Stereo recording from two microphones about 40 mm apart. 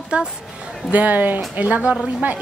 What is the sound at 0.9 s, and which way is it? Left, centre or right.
A woman's voice, right.